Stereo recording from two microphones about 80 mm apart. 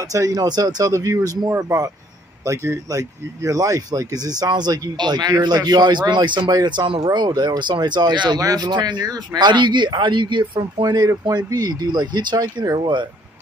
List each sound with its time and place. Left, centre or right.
0.0 s speech: right
0.9 s speech: right
6.0 s speech: right
8.4 s speech: right
8.6 s speech: right
10.8 s speech: right
12.8 s speech: right